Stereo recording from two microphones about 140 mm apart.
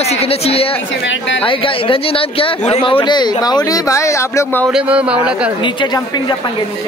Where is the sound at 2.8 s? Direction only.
35° left (ahead or behind).